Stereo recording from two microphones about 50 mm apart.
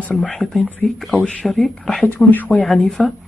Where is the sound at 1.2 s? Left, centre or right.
Centre.